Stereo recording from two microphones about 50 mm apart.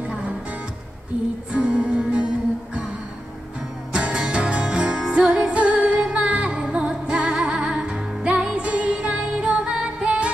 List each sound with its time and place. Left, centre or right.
0.0 s music: right
3.9 s music: centre